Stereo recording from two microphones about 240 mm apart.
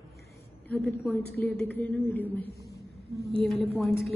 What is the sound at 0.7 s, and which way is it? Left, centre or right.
A woman's voice, centre.